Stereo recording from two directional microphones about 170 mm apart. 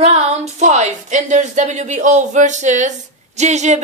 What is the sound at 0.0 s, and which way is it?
Speech, 35° right (ahead or behind).